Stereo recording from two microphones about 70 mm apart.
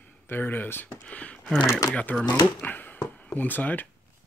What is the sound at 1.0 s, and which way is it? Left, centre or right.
Speech, centre.